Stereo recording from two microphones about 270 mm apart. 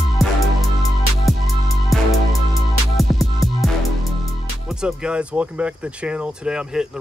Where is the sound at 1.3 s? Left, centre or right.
Centre.